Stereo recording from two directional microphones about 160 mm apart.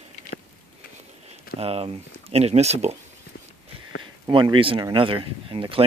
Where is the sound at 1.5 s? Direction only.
40° right (ahead or behind).